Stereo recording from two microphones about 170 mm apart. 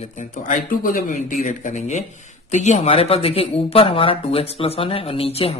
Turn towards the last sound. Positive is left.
turn(degrees=35)  # may be behind; listen again after turning